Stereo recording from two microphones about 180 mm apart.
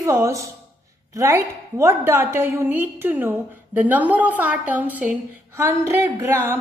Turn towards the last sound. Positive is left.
turn(degrees=-15)  # may be behind; listen again after turning